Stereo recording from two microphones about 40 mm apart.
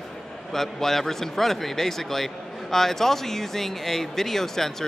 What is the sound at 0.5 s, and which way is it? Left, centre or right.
Speech, centre.